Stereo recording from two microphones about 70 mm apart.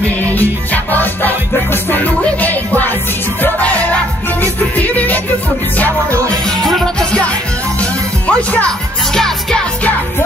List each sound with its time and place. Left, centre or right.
0.0 s music: left
6.6 s music: centre